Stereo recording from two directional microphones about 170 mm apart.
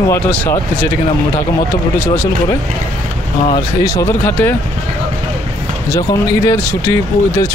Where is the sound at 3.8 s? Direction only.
15° left (ahead or behind).